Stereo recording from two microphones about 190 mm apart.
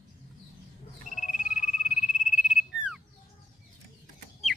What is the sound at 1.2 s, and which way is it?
Frog, 40° left (ahead or behind).